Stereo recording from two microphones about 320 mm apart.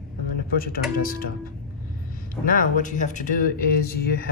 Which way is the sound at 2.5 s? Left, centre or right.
Left.